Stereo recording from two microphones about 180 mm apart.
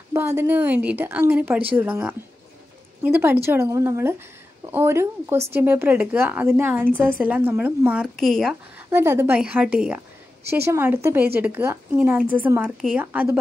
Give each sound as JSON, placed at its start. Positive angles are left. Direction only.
{"t": 0.1, "sound": "speech", "side_deg": -15}
{"t": 8.9, "sound": "speech", "side_deg": -15}